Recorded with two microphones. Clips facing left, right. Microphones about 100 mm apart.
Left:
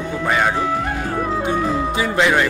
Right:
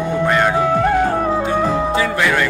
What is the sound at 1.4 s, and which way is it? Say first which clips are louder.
Music: right 2 dB; 15° left (ahead or behind).